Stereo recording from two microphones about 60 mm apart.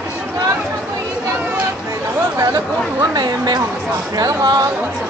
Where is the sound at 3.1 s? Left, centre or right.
Right.